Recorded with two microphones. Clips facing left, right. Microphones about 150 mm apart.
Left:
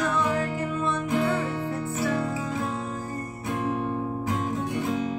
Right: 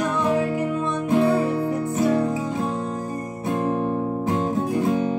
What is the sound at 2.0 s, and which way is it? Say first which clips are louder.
Music: right 7 dB; 20° right (ahead or behind).